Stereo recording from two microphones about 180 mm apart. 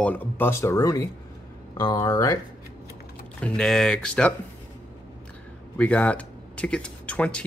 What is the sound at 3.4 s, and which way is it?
Speech, 5° left (ahead or behind).